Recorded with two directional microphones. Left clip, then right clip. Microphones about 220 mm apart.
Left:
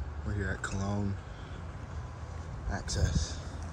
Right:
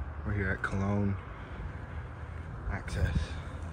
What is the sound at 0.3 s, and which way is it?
Speech, 10° left (ahead or behind).